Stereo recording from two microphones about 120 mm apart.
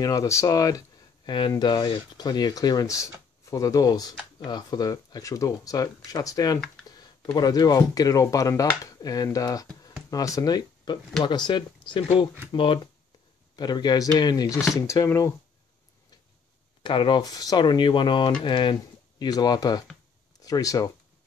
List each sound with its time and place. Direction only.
0.0 s speech: 30° left (ahead or behind); by 12.8 s 45° left (ahead or behind)
13.6 s speech: 35° left (ahead or behind)
16.8 s speech: 45° left (ahead or behind)